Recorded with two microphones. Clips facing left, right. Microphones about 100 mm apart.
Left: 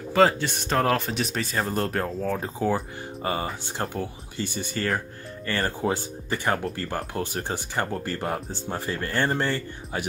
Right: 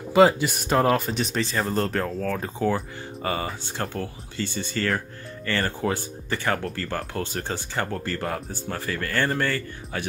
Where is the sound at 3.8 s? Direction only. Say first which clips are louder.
Even; 15° left (ahead or behind).